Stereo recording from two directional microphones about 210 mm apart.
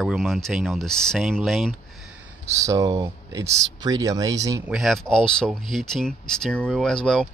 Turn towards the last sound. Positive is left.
turn(degrees=5)  # may be behind; listen again after turning